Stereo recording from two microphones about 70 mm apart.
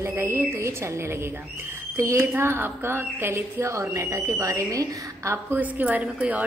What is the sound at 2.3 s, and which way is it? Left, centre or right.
A woman's voice, right.